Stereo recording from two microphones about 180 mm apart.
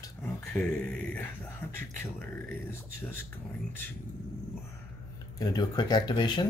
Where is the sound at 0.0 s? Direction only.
15° left (ahead or behind).